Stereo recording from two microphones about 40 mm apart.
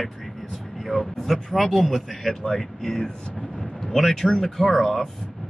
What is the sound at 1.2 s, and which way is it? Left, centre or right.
A man's voice, centre.